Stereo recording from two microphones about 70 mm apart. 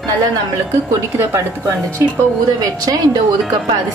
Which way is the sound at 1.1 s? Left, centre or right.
Right.